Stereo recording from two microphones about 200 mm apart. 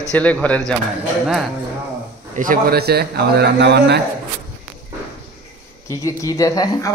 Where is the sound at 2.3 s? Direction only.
45° right (ahead or behind).